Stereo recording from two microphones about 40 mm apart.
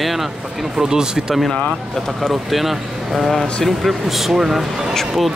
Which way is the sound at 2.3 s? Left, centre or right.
Centre.